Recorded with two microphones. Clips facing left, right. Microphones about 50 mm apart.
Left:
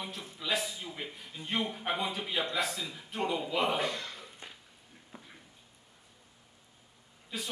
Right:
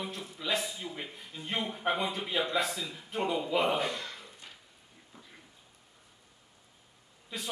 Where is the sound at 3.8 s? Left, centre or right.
Right.